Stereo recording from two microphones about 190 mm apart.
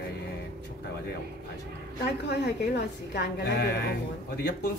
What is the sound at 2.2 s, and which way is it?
A woman's voice, 65° left (ahead or behind).